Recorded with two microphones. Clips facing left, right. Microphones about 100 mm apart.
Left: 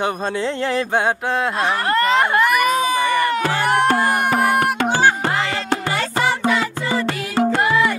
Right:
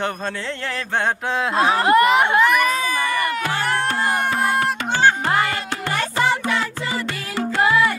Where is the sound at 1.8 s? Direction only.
10° right (ahead or behind).